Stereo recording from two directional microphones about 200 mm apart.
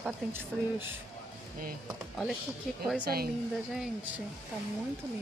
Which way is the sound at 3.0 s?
50° right (ahead or behind).